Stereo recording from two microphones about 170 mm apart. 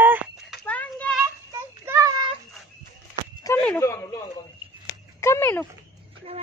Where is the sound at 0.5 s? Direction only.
10° left (ahead or behind).